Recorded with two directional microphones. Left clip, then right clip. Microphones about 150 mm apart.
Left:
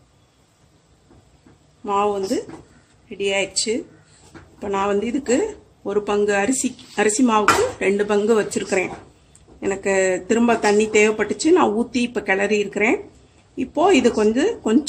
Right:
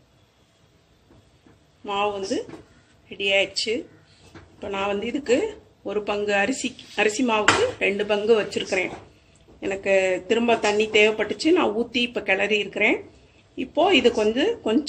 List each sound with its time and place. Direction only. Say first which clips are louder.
1.9 s speech: left 5 dB; 80° left
7.2 s speech: left 4 dB; 90° left; by 12.4 s 75° left (ahead or behind)
13.6 s speech: left 3 dB; 65° left (ahead or behind)
14.0 s speech: left 2 dB; 90° left